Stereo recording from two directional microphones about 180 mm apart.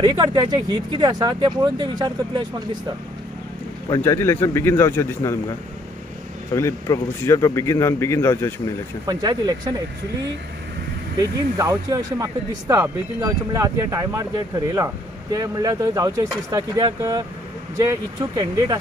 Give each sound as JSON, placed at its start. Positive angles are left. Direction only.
{"t": 0.1, "sound": "speech", "side_deg": -25}
{"t": 3.9, "sound": "a man's voice", "side_deg": 15}
{"t": 6.5, "sound": "a man's voice", "side_deg": 15}
{"t": 9.0, "sound": "speech", "side_deg": -20}
{"t": 11.5, "sound": "speech", "side_deg": -20}